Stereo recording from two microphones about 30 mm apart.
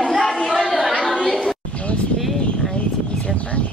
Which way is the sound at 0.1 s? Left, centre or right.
Centre.